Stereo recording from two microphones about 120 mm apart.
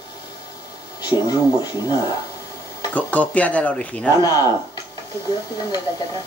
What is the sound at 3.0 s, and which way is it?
Speech, 10° left (ahead or behind).